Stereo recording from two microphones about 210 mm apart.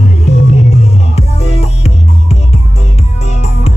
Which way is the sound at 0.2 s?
30° left (ahead or behind).